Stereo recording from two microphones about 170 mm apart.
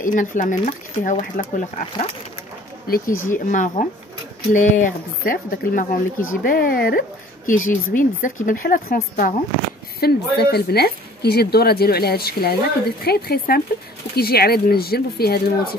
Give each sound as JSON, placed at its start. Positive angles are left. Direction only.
{"t": 0.0, "sound": "speech", "side_deg": 50}
{"t": 2.9, "sound": "speech", "side_deg": 55}